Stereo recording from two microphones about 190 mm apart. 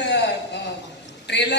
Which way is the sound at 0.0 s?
65° left (ahead or behind).